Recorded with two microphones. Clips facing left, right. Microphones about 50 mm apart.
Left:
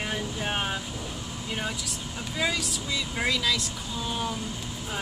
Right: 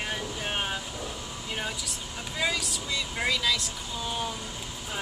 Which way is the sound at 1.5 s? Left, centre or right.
Centre.